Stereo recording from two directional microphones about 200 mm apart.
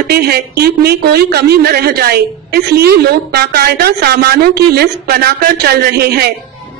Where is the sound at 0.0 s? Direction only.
50° right (ahead or behind).